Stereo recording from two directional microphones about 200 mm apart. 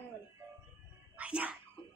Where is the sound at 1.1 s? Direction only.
5° right (ahead or behind).